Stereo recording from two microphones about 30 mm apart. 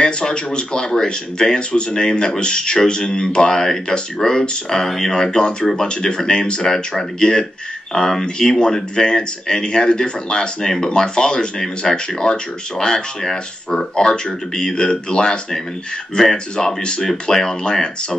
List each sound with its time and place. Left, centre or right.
0.0 s speech: left